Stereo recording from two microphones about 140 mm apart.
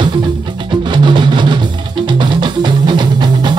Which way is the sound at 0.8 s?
35° right (ahead or behind).